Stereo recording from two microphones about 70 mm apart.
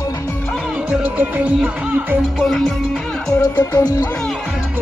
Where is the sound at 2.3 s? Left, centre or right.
Centre.